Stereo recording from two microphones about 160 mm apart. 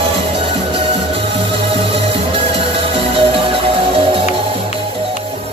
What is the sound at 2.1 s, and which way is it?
Music, 35° right (ahead or behind).